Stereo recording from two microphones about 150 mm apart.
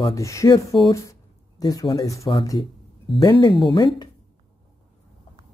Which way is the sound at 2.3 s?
30° left (ahead or behind).